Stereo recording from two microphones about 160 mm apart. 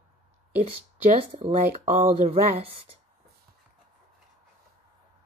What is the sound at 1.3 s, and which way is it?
Speech, 50° right (ahead or behind).